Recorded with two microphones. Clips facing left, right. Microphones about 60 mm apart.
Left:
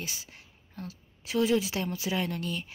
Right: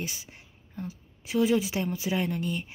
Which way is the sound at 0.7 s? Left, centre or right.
Centre.